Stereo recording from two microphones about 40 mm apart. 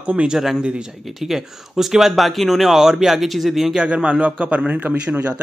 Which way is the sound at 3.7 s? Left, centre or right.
Right.